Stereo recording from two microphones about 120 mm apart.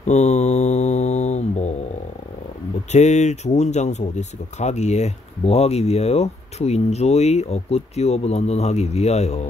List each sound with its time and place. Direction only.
0.0 s mantra: 70° left (ahead or behind)
2.9 s speech: 70° left (ahead or behind)